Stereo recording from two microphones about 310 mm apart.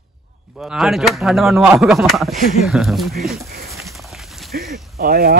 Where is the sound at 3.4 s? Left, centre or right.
Right.